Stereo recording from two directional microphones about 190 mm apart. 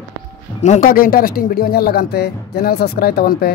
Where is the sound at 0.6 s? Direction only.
40° left (ahead or behind).